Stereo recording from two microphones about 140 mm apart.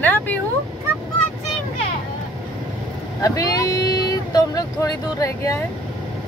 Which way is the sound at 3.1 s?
25° left (ahead or behind).